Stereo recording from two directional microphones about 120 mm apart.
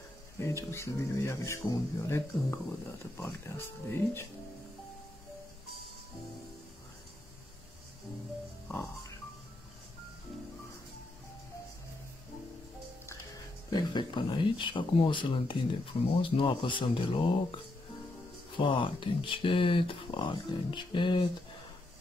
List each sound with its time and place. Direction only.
0.4 s speech: 25° left (ahead or behind)
13.7 s speech: 40° left (ahead or behind)